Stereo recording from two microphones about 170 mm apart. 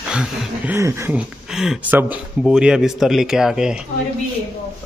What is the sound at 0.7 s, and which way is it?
Speech, 15° right (ahead or behind).